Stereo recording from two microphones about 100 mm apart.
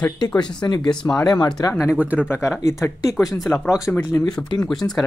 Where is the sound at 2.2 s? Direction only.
25° left (ahead or behind).